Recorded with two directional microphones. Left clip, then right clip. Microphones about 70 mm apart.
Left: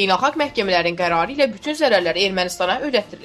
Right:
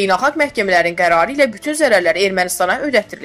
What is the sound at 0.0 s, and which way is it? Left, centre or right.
A woman's voice, right.